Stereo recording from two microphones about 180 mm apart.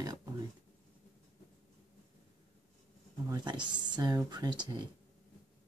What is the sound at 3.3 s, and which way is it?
Speech, 25° right (ahead or behind).